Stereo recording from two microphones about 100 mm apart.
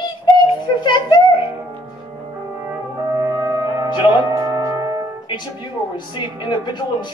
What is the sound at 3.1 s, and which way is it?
French horn, 35° right (ahead or behind).